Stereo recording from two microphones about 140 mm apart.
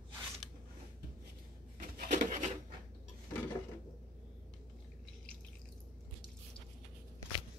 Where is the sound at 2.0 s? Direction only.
65° right (ahead or behind).